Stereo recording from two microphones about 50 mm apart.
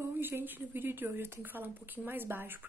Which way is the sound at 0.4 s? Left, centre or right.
Right.